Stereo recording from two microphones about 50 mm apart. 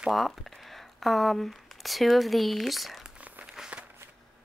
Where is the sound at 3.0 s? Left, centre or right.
Right.